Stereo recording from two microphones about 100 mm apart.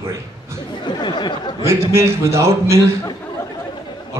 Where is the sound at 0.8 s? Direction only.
50° left (ahead or behind).